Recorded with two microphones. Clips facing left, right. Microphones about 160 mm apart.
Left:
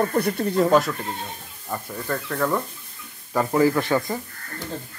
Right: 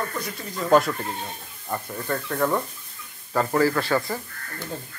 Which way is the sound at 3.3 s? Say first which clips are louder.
Left 2 dB; 15° left (ahead or behind).